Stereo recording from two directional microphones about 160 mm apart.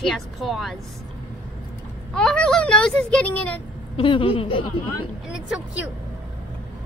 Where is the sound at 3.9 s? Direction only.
30° left (ahead or behind).